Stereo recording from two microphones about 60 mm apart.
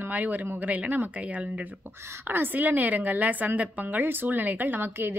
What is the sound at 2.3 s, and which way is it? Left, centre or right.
A woman's voice, right.